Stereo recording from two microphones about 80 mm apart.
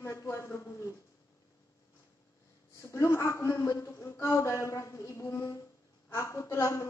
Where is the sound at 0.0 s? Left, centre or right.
Left.